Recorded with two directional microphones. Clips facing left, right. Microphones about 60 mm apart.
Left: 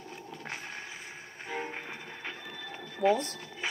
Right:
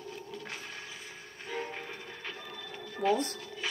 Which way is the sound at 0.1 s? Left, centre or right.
Left.